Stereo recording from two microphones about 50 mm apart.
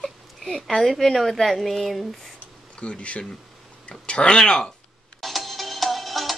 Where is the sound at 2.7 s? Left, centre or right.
Left.